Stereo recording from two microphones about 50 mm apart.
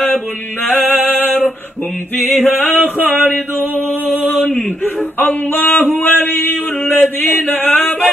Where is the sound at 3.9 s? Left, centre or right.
Left.